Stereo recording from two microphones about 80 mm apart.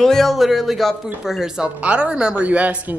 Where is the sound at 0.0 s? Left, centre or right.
Centre.